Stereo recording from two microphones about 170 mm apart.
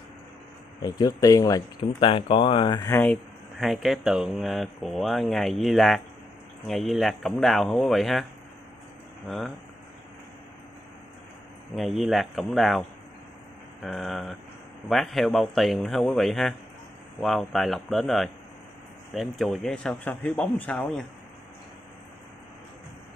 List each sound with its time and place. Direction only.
0.8 s speech: 25° left (ahead or behind)
2.9 s speech: 10° left (ahead or behind)
3.5 s speech: centre (ahead or behind)
11.7 s speech: centre (ahead or behind)
13.8 s speech: centre (ahead or behind)